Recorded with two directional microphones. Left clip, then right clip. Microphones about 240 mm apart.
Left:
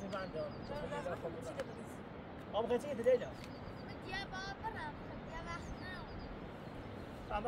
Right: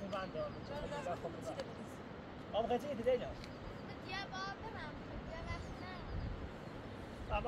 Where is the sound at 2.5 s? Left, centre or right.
Left.